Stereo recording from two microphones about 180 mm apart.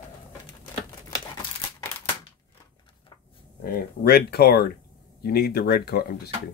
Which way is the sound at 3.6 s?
60° left (ahead or behind).